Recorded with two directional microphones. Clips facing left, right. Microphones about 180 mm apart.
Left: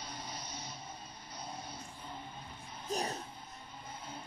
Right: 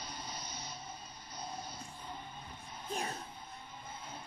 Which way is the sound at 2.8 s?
40° left (ahead or behind).